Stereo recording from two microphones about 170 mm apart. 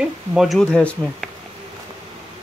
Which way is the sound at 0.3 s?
Centre (ahead or behind).